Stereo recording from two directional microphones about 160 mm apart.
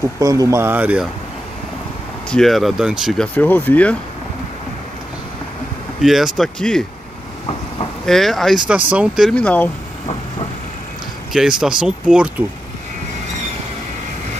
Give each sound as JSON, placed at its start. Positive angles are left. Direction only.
{"t": 0.2, "sound": "speech", "side_deg": -20}
{"t": 2.2, "sound": "speech", "side_deg": 5}
{"t": 5.9, "sound": "speech", "side_deg": 0}
{"t": 8.0, "sound": "speech", "side_deg": 0}
{"t": 9.3, "sound": "speech", "side_deg": 10}
{"t": 11.3, "sound": "speech", "side_deg": -5}